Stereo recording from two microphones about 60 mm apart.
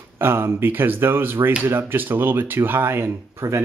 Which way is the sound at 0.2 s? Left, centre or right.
Right.